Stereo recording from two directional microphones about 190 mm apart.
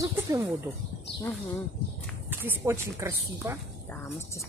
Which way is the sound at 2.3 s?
10° right (ahead or behind).